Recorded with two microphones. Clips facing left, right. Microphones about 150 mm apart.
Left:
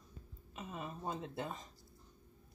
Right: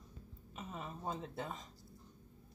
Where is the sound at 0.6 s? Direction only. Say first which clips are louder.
Left 1 dB; 10° left (ahead or behind).